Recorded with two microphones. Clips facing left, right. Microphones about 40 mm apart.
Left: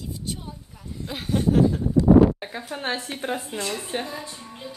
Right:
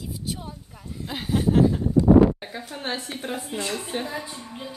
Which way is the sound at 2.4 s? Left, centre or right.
Centre.